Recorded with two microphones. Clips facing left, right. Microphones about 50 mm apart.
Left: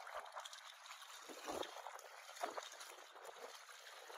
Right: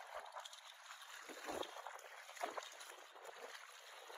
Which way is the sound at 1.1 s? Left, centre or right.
Right.